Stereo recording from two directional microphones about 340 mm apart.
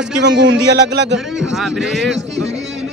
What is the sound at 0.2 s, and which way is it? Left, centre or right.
Speech, right.